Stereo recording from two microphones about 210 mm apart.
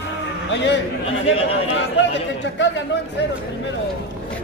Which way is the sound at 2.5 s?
60° left (ahead or behind).